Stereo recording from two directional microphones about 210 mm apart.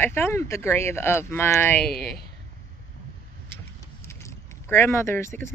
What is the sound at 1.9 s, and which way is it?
Speech, 45° left (ahead or behind).